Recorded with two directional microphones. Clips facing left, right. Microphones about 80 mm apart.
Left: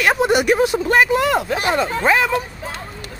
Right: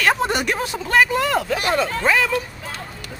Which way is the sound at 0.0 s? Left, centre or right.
Centre.